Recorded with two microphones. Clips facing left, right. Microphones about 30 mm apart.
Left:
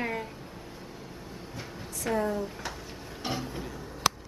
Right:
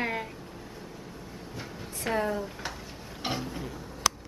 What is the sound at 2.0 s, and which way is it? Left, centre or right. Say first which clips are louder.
Speech: even; right.